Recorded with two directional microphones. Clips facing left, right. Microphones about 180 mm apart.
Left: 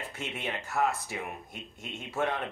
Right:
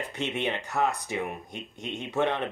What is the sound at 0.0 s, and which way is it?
Speech, centre (ahead or behind).